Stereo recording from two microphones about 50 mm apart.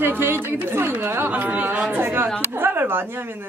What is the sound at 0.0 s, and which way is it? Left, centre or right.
Chatter, right.